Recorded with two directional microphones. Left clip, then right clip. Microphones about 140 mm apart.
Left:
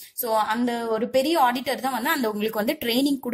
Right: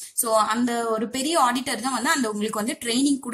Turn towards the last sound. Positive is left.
turn(degrees=40)  # may be behind; listen again after turning